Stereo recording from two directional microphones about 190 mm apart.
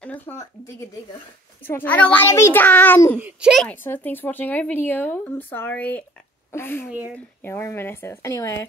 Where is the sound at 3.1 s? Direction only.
5° right (ahead or behind); by 6.8 s 10° left (ahead or behind).